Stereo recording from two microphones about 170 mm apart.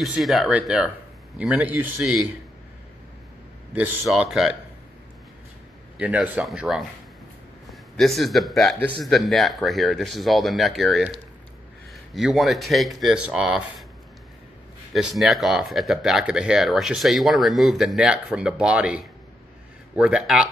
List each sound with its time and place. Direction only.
0.0 s speech: centre (ahead or behind)
3.7 s speech: 10° right (ahead or behind)
5.9 s speech: 10° right (ahead or behind)
8.0 s speech: centre (ahead or behind)
12.1 s speech: centre (ahead or behind)
14.9 s speech: centre (ahead or behind)